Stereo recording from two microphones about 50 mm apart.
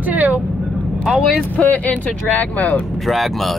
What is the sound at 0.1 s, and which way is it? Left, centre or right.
Vehicle, right.